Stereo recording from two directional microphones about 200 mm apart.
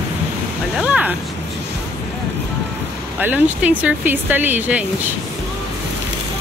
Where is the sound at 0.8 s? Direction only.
5° right (ahead or behind).